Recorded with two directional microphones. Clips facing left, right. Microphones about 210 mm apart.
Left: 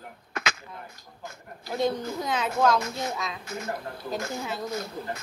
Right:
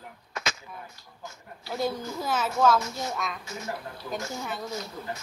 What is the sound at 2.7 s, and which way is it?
A woman's voice, 55° left (ahead or behind).